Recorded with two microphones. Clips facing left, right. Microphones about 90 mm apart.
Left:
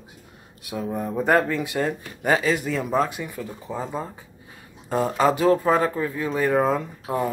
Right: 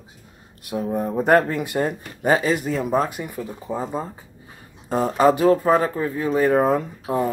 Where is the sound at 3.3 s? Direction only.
15° right (ahead or behind).